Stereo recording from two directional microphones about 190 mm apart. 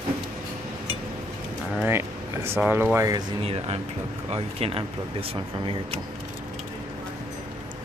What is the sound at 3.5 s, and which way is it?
Speech, 35° right (ahead or behind).